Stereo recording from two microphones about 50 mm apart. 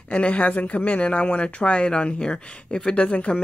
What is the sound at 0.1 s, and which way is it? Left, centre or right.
Speech, left.